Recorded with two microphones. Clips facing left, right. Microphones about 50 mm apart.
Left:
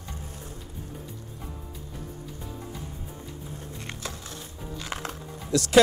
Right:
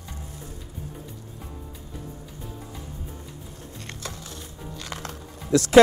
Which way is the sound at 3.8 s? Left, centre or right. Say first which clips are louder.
Right 2 dB; centre.